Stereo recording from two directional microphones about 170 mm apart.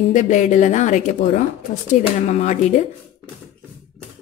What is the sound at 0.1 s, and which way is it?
Speech, 45° left (ahead or behind).